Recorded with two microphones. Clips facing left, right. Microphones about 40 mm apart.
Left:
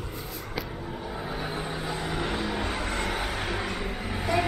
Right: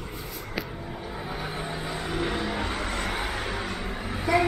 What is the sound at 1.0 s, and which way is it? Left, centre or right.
Vehicle, centre.